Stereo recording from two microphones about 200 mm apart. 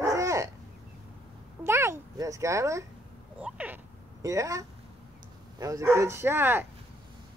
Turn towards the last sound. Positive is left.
turn(degrees=-10)  # may be behind; listen again after turning